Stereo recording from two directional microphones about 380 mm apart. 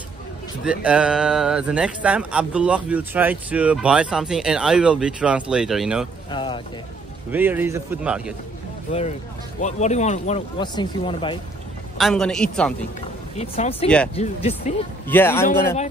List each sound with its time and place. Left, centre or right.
0.7 s speech: centre
6.3 s speech: centre
7.2 s speech: centre
9.6 s speech: centre
12.0 s speech: centre
13.4 s speech: centre
13.8 s speech: centre
14.1 s speech: centre